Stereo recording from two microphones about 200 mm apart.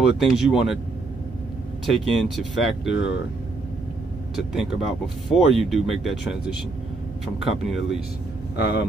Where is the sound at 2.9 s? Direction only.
65° left (ahead or behind).